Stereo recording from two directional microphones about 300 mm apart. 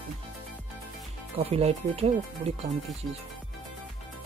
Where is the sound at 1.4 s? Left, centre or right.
Centre.